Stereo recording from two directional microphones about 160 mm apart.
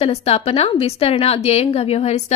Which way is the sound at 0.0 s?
40° left (ahead or behind).